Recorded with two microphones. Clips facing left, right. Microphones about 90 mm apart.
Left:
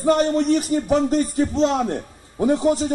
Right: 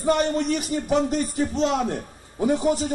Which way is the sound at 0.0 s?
35° left (ahead or behind).